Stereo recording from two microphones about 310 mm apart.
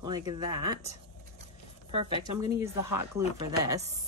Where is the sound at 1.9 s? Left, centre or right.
Centre.